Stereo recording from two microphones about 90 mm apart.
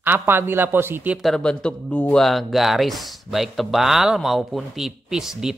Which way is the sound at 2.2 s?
Centre (ahead or behind).